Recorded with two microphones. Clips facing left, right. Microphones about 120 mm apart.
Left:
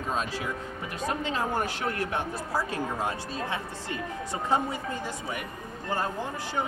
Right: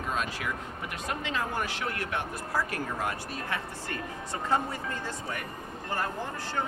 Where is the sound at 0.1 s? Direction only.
30° left (ahead or behind).